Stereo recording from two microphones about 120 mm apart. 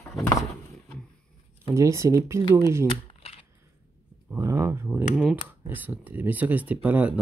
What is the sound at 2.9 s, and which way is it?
Shuffling cards, 50° left (ahead or behind).